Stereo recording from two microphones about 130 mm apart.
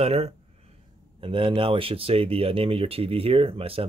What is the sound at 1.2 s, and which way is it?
Speech, 45° right (ahead or behind).